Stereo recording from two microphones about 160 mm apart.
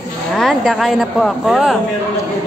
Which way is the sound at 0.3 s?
Centre (ahead or behind).